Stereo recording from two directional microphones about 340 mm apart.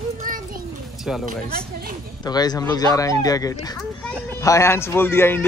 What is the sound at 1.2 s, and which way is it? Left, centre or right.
Speech, right.